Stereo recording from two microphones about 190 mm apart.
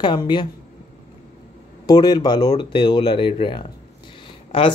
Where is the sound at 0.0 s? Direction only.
25° left (ahead or behind).